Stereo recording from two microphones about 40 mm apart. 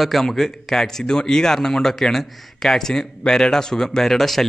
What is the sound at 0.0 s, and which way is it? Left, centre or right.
Speech, centre.